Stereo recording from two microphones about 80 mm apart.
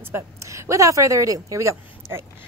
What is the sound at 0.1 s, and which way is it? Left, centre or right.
A woman's voice, right.